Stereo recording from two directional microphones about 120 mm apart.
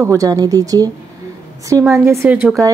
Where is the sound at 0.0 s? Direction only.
25° right (ahead or behind).